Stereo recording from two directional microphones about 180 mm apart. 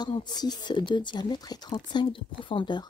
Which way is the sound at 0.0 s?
25° left (ahead or behind).